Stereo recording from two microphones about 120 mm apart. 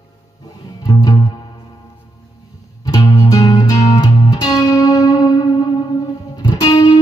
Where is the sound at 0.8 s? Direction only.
35° left (ahead or behind).